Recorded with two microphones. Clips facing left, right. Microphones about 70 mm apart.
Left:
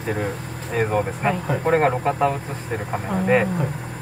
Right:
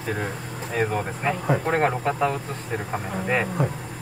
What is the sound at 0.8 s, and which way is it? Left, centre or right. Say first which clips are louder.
Speech: left 4 dB; centre.